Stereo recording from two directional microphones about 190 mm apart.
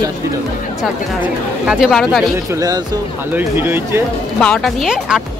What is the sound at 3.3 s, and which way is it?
Speech, 10° right (ahead or behind).